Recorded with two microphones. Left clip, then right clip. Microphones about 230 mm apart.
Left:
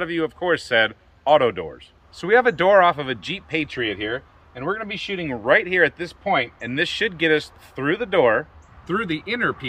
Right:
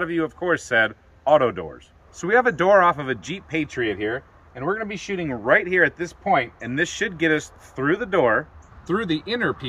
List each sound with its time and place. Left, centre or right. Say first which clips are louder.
0.0 s speech: left 1 dB; centre
8.8 s speech: even; centre